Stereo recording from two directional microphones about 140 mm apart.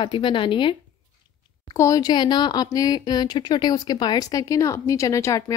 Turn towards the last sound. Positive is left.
turn(degrees=20)  # may be behind; listen again after turning